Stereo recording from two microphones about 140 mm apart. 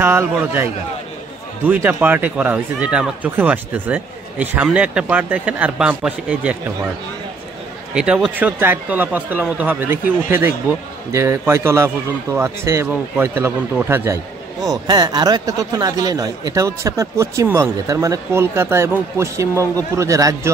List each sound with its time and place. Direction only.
0.0 s speech: 15° right (ahead or behind)
1.7 s speech: 15° right (ahead or behind)
7.9 s a man's voice: 5° right (ahead or behind); by 20.5 s 25° right (ahead or behind)